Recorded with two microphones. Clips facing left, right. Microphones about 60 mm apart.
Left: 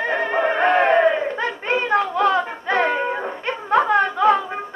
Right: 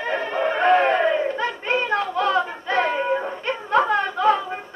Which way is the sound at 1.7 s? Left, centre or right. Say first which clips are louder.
Left 4 dB; left.